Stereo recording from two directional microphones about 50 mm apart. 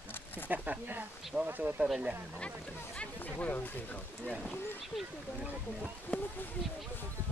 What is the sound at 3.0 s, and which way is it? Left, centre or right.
Speech, left.